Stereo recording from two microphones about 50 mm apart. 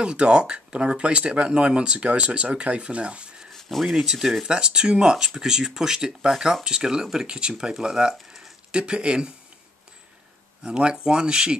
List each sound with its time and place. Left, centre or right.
0.0 s speech: centre
3.5 s a sound: centre
3.9 s speech: centre
10.6 s speech: centre